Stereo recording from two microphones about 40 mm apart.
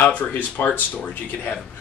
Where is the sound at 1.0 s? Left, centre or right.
Left.